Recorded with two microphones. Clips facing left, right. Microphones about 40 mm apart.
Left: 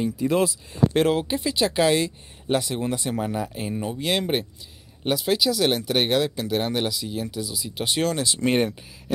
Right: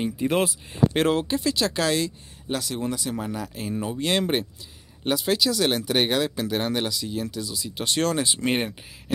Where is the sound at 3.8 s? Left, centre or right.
Centre.